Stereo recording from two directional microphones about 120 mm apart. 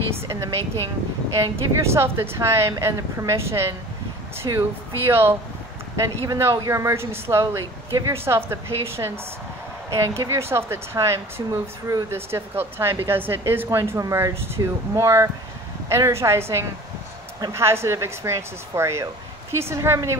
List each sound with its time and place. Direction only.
0.3 s a woman's voice: 25° right (ahead or behind)